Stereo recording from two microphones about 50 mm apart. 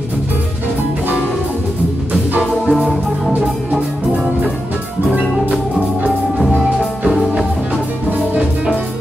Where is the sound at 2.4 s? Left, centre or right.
Centre.